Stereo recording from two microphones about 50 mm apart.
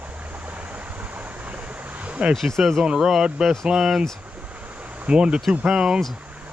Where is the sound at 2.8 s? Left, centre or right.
Centre.